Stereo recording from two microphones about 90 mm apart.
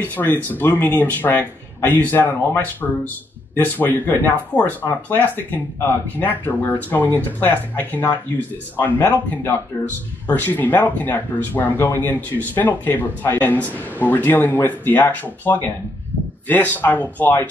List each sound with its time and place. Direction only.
0.1 s speech: 20° left (ahead or behind)